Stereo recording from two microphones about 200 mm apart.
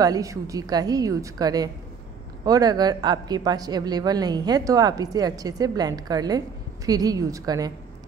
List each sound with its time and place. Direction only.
0.0 s speech: 15° right (ahead or behind)